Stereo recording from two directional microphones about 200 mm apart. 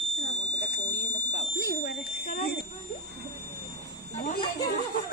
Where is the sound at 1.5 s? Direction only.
50° left (ahead or behind).